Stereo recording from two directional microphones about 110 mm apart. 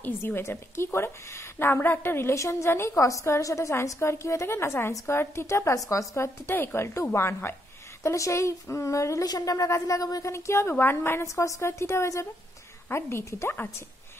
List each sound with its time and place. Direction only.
0.0 s a woman's voice: 20° left (ahead or behind)